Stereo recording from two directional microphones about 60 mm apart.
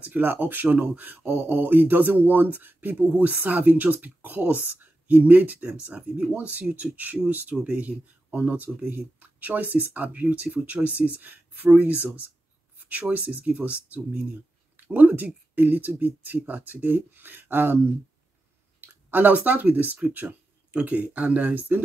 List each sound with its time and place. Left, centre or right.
0.0 s speech: right
18.8 s speech: right